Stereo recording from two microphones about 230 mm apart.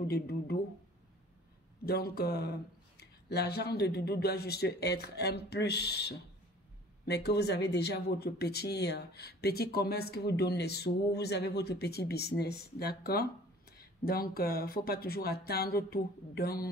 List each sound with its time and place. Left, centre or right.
0.1 s speech: left
1.9 s speech: left